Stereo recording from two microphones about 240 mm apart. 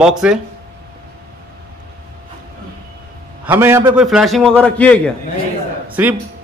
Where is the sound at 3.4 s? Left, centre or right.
Centre.